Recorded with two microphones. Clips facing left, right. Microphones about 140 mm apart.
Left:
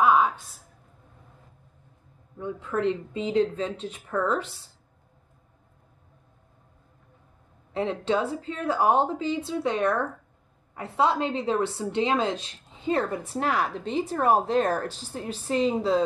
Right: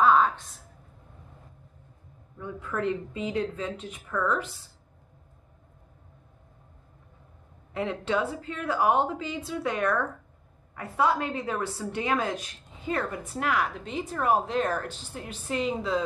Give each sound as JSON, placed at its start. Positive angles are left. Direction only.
{"t": 0.0, "sound": "a sound", "side_deg": 10}
{"t": 2.3, "sound": "a woman's voice", "side_deg": 25}
{"t": 7.7, "sound": "a woman's voice", "side_deg": 30}